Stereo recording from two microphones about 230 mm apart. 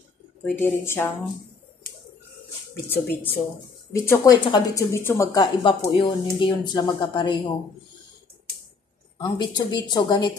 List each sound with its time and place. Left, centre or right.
0.6 s a woman's voice: centre
2.9 s a woman's voice: centre
9.2 s a woman's voice: centre